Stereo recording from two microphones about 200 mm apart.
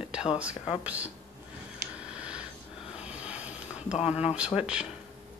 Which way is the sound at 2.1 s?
5° right (ahead or behind).